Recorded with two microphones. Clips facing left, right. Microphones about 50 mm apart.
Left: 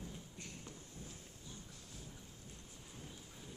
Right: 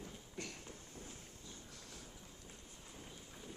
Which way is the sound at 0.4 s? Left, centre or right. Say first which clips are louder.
Right 10 dB; right.